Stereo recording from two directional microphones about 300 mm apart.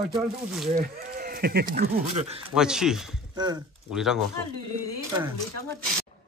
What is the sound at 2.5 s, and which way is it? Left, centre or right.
Speech, centre.